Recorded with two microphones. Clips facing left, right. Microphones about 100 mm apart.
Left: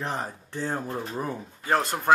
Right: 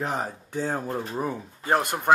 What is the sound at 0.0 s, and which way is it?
Speech, 15° right (ahead or behind).